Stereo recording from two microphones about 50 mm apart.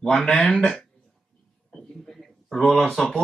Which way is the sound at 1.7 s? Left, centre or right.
Centre.